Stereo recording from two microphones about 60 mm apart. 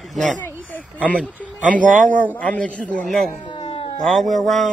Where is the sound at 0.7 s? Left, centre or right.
Left.